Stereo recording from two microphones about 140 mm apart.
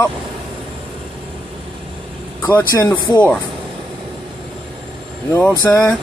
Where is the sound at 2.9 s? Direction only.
30° left (ahead or behind).